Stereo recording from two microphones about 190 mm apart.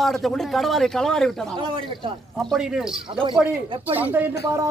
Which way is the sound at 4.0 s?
10° right (ahead or behind).